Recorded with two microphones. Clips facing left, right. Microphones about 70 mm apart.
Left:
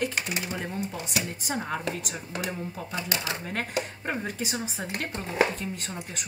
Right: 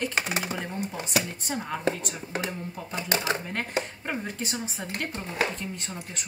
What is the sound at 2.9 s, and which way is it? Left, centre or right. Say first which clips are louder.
Speech: right 5 dB; right.